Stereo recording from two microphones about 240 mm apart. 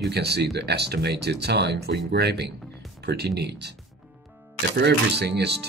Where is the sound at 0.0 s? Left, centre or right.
Right.